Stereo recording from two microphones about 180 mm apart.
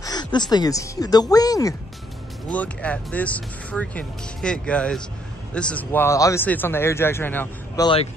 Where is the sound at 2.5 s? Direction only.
5° left (ahead or behind).